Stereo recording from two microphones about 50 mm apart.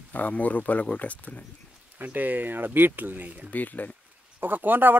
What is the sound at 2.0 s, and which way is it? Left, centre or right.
A man's voice, right.